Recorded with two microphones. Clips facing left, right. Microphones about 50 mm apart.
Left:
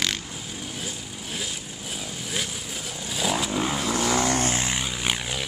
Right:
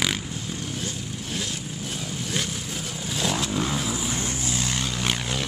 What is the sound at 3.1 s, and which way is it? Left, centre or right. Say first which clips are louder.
Vehicle: left 1 dB; centre.